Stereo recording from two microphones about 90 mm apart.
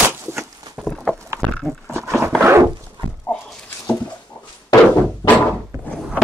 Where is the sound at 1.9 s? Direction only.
30° right (ahead or behind).